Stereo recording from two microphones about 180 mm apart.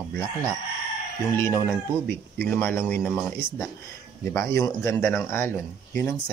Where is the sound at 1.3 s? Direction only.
15° left (ahead or behind).